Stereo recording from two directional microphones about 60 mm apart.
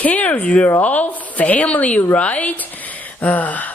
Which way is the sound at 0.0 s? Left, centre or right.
Left.